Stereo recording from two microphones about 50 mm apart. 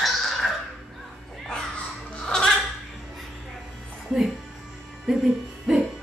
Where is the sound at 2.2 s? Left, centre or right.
Centre.